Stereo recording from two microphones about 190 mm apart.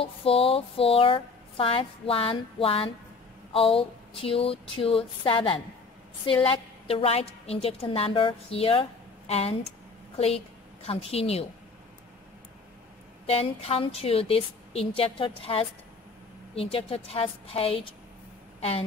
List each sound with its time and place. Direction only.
0.0 s speech: 30° left (ahead or behind)
6.9 s a woman's voice: 30° left (ahead or behind)
13.3 s a woman's voice: 30° left (ahead or behind)